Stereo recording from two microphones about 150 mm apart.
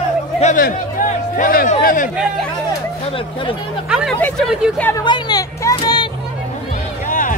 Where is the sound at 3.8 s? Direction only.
5° right (ahead or behind).